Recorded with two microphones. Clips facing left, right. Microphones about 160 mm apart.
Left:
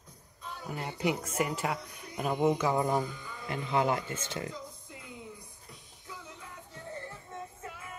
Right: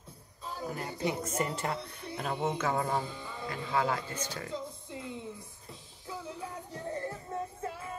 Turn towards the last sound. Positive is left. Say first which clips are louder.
# right 6 dB
turn(degrees=-35)  # may be behind; listen again after turning